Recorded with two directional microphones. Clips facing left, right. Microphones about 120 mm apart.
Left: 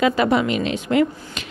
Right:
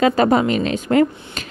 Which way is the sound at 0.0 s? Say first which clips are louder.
Right 3 dB; 40° right (ahead or behind).